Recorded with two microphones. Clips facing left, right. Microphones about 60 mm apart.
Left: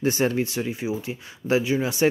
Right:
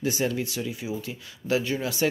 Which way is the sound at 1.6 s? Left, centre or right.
Centre.